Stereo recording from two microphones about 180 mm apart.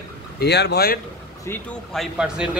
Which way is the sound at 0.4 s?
70° left (ahead or behind).